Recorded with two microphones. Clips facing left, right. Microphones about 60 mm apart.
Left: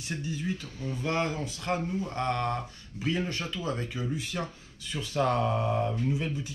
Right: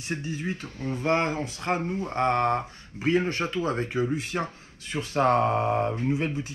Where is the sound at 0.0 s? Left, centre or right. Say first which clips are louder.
Right 3 dB; right.